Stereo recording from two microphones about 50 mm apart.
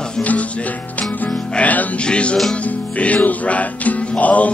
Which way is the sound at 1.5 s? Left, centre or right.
Left.